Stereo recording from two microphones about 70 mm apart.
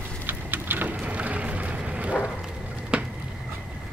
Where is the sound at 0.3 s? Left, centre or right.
Right.